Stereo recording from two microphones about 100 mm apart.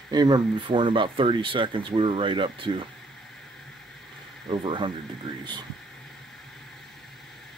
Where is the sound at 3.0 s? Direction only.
5° left (ahead or behind).